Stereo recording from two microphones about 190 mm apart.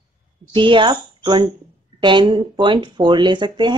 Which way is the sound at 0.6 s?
25° right (ahead or behind).